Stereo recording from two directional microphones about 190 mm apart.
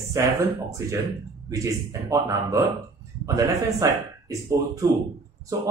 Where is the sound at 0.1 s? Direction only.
15° right (ahead or behind).